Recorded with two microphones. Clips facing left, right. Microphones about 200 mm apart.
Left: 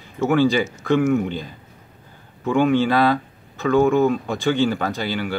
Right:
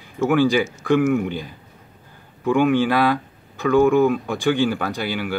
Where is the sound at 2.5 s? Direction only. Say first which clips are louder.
Left 1 dB; 10° right (ahead or behind).